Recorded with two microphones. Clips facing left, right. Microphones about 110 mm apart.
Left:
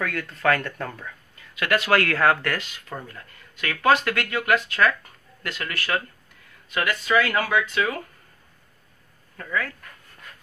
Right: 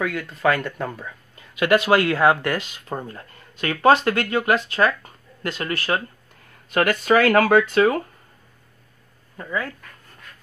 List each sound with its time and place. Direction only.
0.0 s speech: 10° right (ahead or behind); by 6.0 s 30° right (ahead or behind)
6.7 s speech: 50° right (ahead or behind)
9.4 s speech: 25° right (ahead or behind)